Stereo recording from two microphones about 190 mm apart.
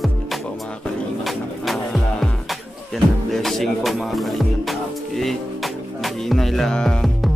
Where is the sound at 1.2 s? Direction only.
Centre (ahead or behind).